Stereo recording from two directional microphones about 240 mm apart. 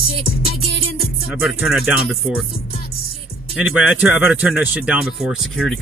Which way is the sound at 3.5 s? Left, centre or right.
Centre.